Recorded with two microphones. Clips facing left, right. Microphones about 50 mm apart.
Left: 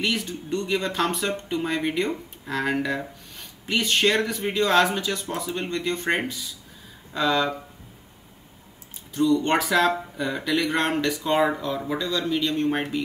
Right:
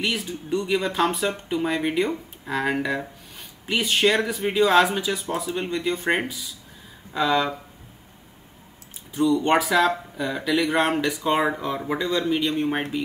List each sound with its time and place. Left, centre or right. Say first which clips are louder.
0.0 s speech: even; centre
9.1 s a man's voice: right 1 dB; centre